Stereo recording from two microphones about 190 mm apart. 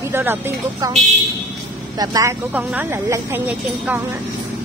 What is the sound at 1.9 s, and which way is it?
Speech, 20° right (ahead or behind).